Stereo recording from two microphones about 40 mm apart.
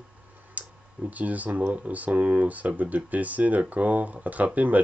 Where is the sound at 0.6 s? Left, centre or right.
Right.